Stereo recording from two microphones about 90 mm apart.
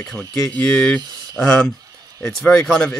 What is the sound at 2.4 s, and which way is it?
Speech, 20° left (ahead or behind).